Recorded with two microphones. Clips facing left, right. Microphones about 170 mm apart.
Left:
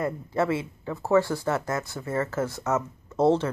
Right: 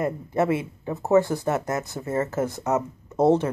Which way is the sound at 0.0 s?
20° right (ahead or behind).